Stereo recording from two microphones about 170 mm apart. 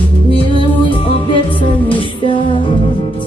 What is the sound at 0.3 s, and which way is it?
Music, 30° left (ahead or behind).